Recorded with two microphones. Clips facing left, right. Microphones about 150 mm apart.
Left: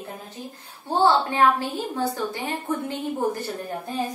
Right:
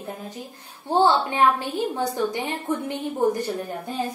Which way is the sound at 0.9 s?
20° right (ahead or behind).